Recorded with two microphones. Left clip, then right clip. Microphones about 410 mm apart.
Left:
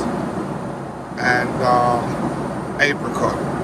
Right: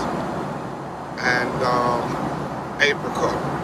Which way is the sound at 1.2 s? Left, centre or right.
Centre.